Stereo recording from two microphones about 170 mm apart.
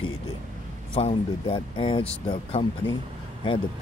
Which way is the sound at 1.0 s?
35° left (ahead or behind).